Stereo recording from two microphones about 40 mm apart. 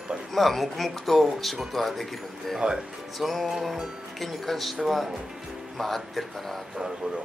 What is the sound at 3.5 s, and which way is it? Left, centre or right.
Music, centre.